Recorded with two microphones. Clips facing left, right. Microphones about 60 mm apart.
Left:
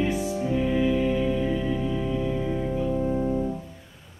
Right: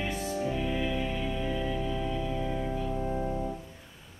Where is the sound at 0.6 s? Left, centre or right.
Centre.